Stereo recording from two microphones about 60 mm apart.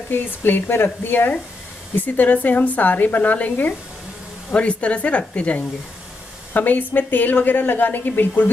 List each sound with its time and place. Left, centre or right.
0.1 s a woman's voice: left